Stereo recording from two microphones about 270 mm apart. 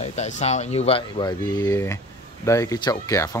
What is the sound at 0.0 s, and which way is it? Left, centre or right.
Speech, left.